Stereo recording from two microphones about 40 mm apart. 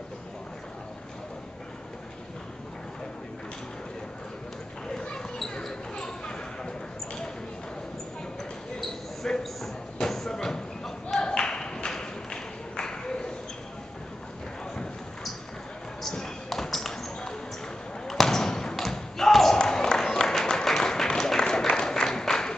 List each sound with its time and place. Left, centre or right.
4.8 s basketball bounce: centre
8.8 s a sound: centre
16.0 s music: centre
18.0 s basketball bounce: centre